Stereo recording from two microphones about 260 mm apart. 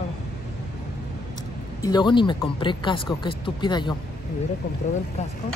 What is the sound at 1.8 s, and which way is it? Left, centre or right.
Speech, centre.